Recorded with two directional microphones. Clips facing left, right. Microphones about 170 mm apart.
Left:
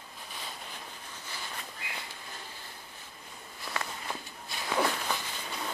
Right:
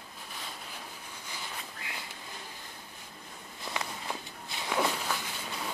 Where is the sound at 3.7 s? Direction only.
15° right (ahead or behind).